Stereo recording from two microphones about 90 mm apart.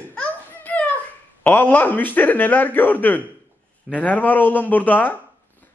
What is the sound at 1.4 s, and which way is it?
A man's voice, 20° left (ahead or behind).